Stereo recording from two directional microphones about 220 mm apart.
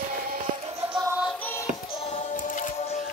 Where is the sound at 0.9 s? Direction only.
15° right (ahead or behind).